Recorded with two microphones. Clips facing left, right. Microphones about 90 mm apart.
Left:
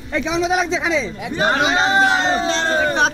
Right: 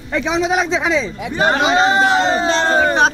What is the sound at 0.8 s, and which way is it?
Speech, 55° right (ahead or behind).